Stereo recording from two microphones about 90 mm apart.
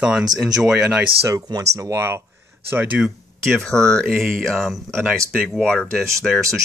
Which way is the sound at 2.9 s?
10° right (ahead or behind).